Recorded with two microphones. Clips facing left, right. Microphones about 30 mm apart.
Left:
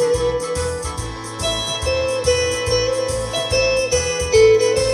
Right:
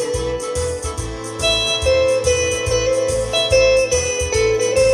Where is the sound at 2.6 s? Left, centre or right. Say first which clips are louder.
Right 1 dB; right.